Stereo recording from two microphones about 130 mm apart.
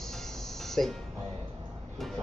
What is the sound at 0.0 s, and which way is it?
Music, 5° left (ahead or behind).